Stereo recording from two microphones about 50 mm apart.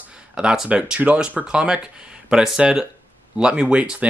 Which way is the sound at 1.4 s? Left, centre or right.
Centre.